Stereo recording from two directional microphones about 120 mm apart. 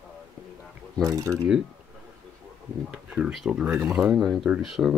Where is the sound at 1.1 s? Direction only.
25° right (ahead or behind).